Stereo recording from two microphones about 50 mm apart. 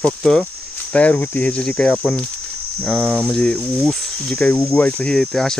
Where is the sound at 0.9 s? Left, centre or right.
Left.